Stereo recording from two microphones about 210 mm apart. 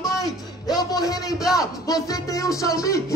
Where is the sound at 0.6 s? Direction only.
20° left (ahead or behind).